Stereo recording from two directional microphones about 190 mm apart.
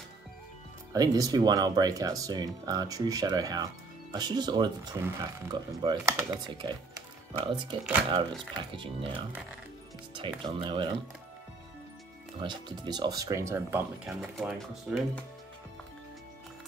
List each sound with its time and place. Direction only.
0.9 s speech: 20° right (ahead or behind)
7.3 s speech: 25° right (ahead or behind)
10.1 s speech: 25° right (ahead or behind)
12.4 s speech: 25° right (ahead or behind); by 15.0 s 5° right (ahead or behind)